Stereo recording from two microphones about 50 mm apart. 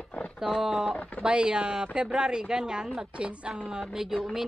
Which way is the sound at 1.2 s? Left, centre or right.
Centre.